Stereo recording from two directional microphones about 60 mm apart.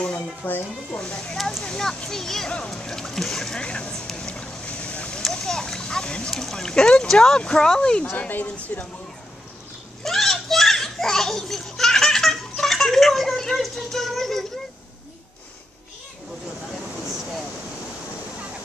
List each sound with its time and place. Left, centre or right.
0.4 s speech: left
0.9 s speech: centre
3.5 s boat: centre
5.2 s speech: centre
8.7 s speech: left
10.0 s children playing: centre